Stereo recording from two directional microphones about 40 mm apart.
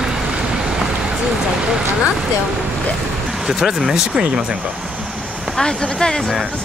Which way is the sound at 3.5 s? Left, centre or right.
Centre.